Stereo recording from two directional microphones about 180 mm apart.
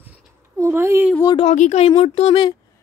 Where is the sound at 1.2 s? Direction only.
20° left (ahead or behind).